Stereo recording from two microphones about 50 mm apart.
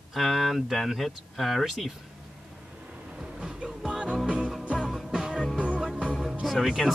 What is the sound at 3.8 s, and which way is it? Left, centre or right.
Music, centre.